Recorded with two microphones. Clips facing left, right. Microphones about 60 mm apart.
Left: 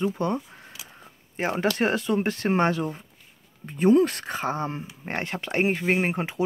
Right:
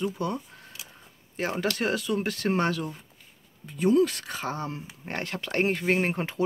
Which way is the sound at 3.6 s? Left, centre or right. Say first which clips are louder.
Left 3 dB; left.